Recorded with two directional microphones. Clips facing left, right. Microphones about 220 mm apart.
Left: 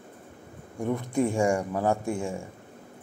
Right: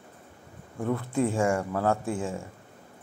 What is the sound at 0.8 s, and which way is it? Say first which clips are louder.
Speech: left 1 dB; 15° left (ahead or behind).